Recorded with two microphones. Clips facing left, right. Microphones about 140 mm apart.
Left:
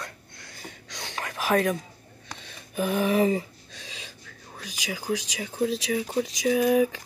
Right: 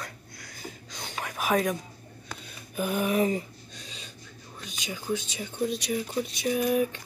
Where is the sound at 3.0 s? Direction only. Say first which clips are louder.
Left 3 dB; 90° left.